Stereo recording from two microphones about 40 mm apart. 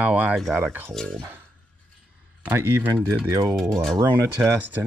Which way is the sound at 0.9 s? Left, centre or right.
Centre.